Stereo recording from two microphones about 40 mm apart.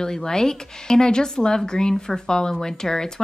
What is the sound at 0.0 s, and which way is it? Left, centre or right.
Speech, centre.